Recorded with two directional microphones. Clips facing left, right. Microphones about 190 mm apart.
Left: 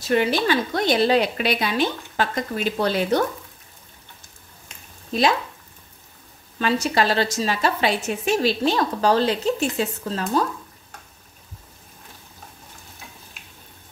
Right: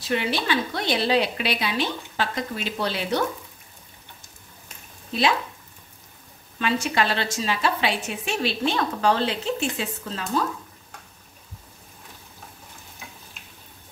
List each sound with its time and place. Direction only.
0.1 s a woman's voice: 45° left (ahead or behind)
5.1 s a woman's voice: 40° left (ahead or behind)
6.6 s a woman's voice: 35° left (ahead or behind)